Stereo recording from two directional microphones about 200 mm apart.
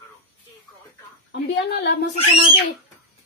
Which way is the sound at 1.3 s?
60° left (ahead or behind).